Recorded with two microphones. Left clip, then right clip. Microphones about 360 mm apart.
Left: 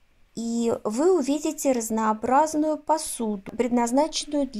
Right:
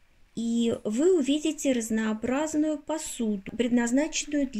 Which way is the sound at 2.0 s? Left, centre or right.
Left.